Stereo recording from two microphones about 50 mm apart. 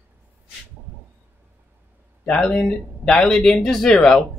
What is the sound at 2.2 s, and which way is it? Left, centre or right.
Speech, centre.